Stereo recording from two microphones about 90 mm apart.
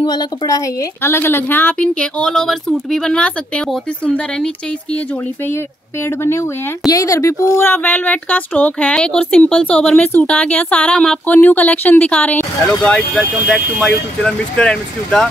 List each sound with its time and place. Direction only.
0.0 s speech: 45° left (ahead or behind)
1.0 s speech: 25° left (ahead or behind)
6.0 s speech: 30° left (ahead or behind); by 15.2 s 10° left (ahead or behind)